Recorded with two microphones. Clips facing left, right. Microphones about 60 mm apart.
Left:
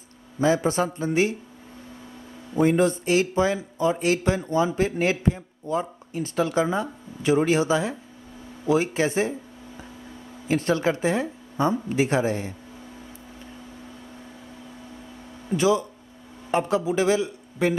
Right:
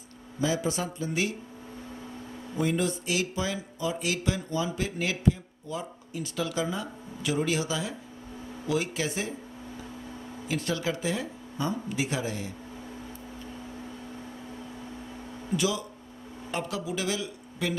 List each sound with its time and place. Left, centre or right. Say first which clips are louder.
0.4 s speech: left 7 dB; left
2.5 s speech: left 8 dB; left
10.5 s speech: left 8 dB; left
15.5 s a man's voice: left 7 dB; left